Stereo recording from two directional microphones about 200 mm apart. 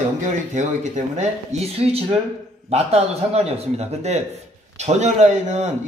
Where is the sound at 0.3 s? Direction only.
35° right (ahead or behind).